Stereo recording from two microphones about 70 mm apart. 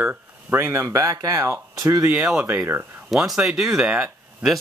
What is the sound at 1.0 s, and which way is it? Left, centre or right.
Speech, right.